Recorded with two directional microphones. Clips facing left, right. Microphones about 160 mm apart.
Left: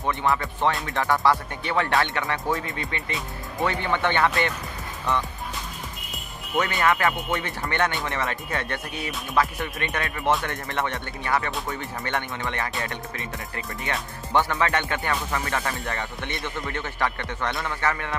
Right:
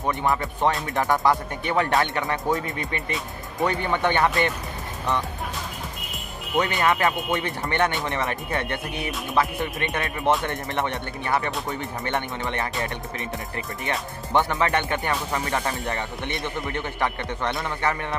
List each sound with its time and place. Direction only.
0.0 s speech: 15° right (ahead or behind)
3.6 s speech: 15° right (ahead or behind)
6.5 s speech: 20° right (ahead or behind)
14.3 s speech: 20° right (ahead or behind)